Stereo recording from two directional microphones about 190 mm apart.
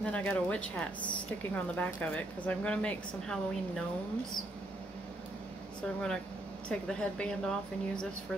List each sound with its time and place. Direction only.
0.0 s a woman's voice: 5° left (ahead or behind)
5.8 s speech: 5° left (ahead or behind)